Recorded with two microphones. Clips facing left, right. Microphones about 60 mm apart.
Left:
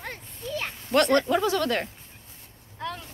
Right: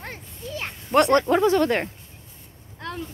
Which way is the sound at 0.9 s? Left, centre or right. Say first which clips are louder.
Right 3 dB; centre.